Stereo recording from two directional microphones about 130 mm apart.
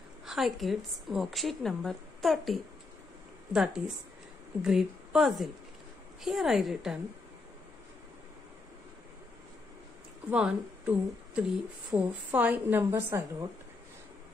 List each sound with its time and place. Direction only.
0.2 s a woman's voice: centre (ahead or behind)
10.3 s a woman's voice: 10° right (ahead or behind)